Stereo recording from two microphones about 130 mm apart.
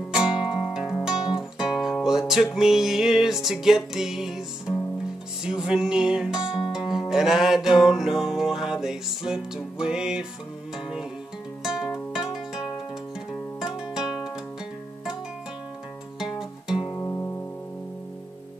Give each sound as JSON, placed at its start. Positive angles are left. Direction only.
{"t": 0.1, "sound": "guitar", "side_deg": -5}
{"t": 5.4, "sound": "music", "side_deg": -5}
{"t": 11.6, "sound": "music", "side_deg": -5}
{"t": 13.3, "sound": "music", "side_deg": -5}
{"t": 16.2, "sound": "music", "side_deg": -5}
{"t": 16.9, "sound": "music", "side_deg": 20}